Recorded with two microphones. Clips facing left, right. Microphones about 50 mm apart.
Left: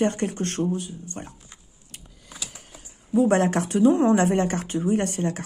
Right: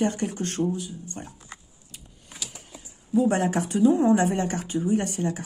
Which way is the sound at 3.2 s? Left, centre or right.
Left.